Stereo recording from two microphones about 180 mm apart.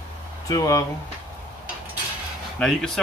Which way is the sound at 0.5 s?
20° left (ahead or behind).